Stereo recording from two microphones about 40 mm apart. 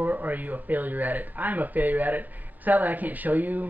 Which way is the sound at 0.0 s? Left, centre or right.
Right.